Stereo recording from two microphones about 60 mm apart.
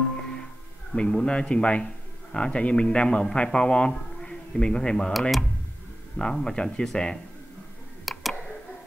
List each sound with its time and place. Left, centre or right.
0.2 s music: centre
0.9 s a man's voice: centre
6.1 s a man's voice: centre
8.0 s a sound: centre